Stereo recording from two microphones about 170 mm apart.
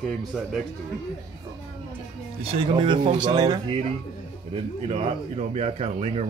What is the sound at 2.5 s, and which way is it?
Speech, 30° right (ahead or behind).